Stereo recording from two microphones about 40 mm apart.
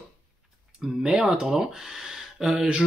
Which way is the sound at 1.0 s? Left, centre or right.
Centre.